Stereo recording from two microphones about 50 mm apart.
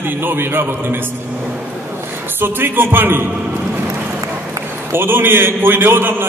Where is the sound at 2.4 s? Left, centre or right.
Right.